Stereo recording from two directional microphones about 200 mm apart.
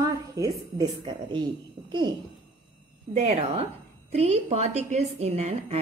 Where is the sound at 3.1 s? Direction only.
30° right (ahead or behind).